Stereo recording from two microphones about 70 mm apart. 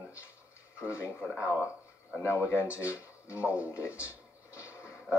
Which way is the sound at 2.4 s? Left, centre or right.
Right.